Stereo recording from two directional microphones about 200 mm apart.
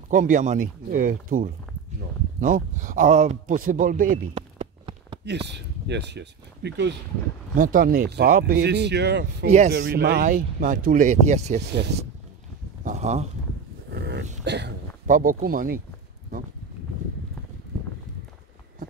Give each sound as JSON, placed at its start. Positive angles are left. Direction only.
{"t": 0.1, "sound": "speech", "side_deg": -40}
{"t": 4.3, "sound": "a sound", "side_deg": -30}
{"t": 5.5, "sound": "speech", "side_deg": -60}
{"t": 7.5, "sound": "speech", "side_deg": -45}
{"t": 12.8, "sound": "speech", "side_deg": -35}
{"t": 13.9, "sound": "livestock", "side_deg": -55}
{"t": 14.4, "sound": "speech", "side_deg": -60}
{"t": 15.0, "sound": "speech", "side_deg": -45}